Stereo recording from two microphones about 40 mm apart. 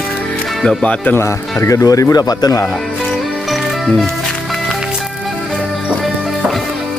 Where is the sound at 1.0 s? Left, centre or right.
Left.